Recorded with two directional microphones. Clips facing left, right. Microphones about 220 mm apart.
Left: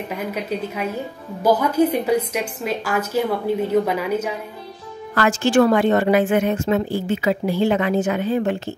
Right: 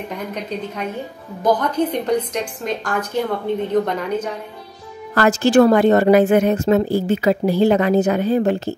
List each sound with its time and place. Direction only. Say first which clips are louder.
0.1 s a woman's voice: left 3 dB; 5° left (ahead or behind)
5.1 s a woman's voice: right 3 dB; 40° right (ahead or behind)